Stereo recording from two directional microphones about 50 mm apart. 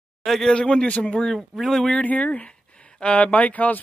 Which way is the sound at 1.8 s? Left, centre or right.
Left.